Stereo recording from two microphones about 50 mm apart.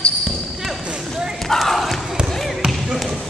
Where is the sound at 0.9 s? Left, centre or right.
Centre.